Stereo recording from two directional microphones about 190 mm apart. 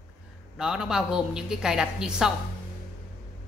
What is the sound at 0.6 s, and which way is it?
A woman's voice, 5° right (ahead or behind).